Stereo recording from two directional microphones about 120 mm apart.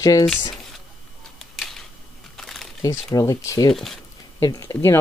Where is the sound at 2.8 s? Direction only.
25° left (ahead or behind).